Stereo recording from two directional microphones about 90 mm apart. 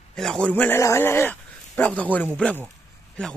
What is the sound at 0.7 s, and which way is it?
Speech, 30° left (ahead or behind).